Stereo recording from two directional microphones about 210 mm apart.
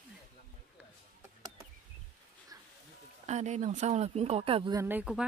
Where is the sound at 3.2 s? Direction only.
35° right (ahead or behind).